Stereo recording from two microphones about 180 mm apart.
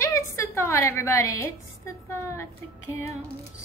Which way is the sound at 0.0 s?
15° left (ahead or behind).